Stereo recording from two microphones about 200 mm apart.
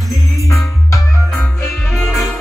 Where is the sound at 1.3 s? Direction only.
5° left (ahead or behind).